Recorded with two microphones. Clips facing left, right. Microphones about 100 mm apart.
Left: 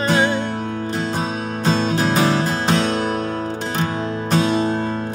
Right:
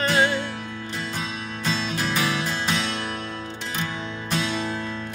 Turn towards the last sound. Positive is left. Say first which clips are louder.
# left 9 dB
turn(degrees=45)  # may be behind; listen again after turning